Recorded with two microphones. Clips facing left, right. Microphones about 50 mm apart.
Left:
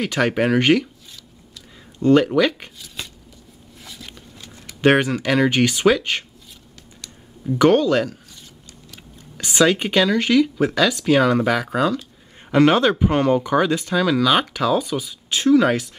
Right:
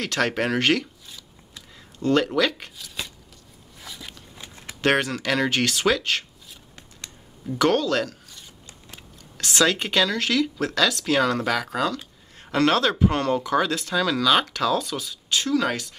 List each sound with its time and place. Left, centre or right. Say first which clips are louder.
0.0 s speech: left 4 dB; centre
2.0 s speech: left 6 dB; centre
3.8 s a sound: even; centre
4.4 s a sound: even; right
4.8 s speech: left 5 dB; centre
7.4 s speech: left 6 dB; centre
9.4 s a man's voice: left 4 dB; centre